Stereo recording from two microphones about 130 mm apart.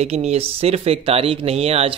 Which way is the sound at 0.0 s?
55° right (ahead or behind).